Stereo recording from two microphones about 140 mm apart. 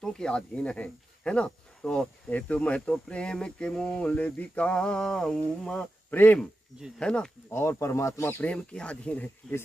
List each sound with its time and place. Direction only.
0.0 s speech: 5° left (ahead or behind)
7.5 s speech: 20° left (ahead or behind)